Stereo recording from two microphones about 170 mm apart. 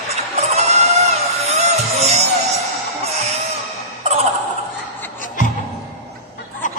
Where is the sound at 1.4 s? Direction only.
40° right (ahead or behind).